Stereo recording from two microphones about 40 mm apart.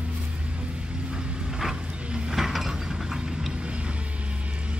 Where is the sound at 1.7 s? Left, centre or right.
Right.